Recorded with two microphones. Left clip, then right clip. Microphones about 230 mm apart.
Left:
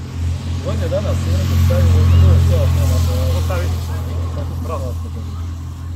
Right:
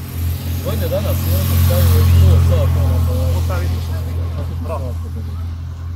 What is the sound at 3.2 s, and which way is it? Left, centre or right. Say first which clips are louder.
Speech: left 1 dB; centre.